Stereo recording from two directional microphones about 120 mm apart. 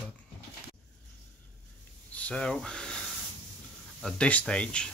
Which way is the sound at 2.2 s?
10° left (ahead or behind).